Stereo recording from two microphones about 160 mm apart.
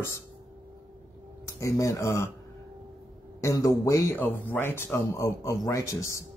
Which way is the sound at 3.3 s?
20° left (ahead or behind).